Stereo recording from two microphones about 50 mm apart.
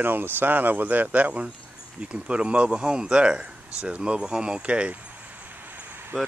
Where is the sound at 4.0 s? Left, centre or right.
Centre; by 6.1 s right.